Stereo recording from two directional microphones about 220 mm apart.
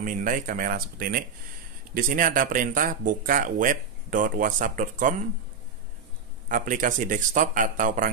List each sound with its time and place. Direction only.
0.0 s speech: 35° right (ahead or behind)
6.5 s speech: 35° right (ahead or behind)